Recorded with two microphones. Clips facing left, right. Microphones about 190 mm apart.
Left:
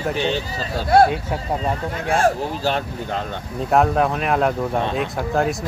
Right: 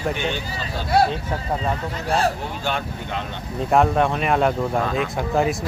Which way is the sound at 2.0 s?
50° left (ahead or behind).